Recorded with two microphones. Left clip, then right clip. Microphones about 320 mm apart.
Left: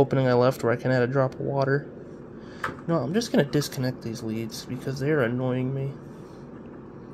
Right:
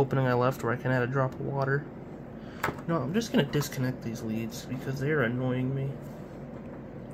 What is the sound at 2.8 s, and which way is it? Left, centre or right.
Speech, centre.